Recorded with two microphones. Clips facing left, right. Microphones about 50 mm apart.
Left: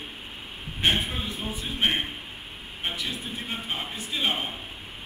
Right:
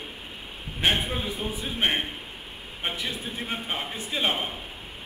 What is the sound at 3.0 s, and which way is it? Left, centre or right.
Speech, centre.